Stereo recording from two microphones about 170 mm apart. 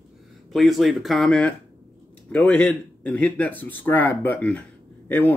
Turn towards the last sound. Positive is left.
turn(degrees=10)  # may be behind; listen again after turning